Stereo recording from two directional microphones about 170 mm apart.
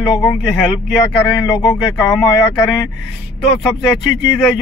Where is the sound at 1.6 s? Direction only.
20° left (ahead or behind).